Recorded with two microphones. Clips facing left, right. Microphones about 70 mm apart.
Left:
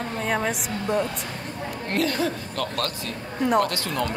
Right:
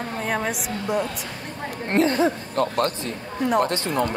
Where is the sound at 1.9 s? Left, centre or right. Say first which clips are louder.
Right 5 dB; right.